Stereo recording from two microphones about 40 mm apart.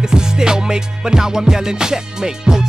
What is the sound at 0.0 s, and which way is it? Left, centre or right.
Music, centre.